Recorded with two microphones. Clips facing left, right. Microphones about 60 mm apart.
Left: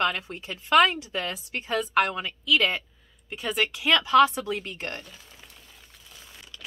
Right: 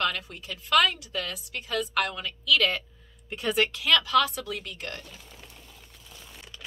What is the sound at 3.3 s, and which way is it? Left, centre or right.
Speech, centre.